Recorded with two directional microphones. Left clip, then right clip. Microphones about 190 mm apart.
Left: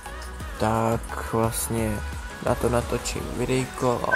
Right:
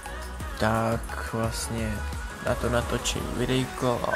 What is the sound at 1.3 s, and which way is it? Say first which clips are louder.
Mantra: left 6 dB; 25° left (ahead or behind).